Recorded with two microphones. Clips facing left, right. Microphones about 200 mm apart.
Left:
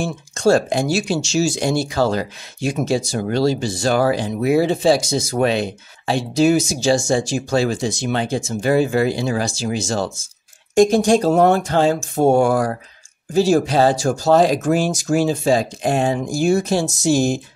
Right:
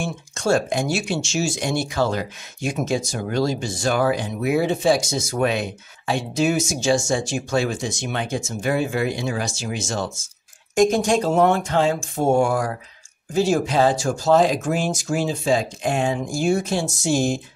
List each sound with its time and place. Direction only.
0.0 s speech: 35° left (ahead or behind)